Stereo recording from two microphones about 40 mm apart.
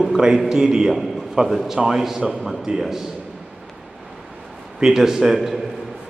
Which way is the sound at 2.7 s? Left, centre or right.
Right.